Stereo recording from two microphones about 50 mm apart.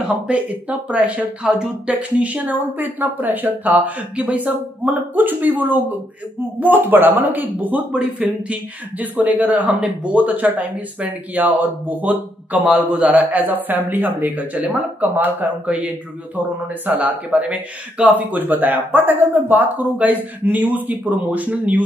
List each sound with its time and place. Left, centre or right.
0.3 s speech: right
1.4 s speech: centre
1.9 s speech: right